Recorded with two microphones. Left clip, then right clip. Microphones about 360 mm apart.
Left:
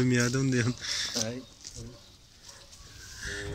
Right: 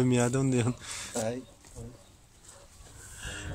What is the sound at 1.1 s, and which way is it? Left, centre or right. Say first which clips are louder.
Speech: right 1 dB; right.